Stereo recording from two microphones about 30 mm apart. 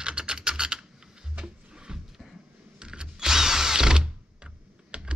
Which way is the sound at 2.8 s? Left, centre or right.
Right.